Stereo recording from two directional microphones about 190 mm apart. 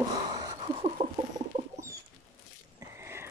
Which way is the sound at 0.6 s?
30° right (ahead or behind).